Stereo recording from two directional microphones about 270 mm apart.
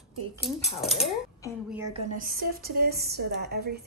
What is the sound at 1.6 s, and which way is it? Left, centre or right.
Speech, centre.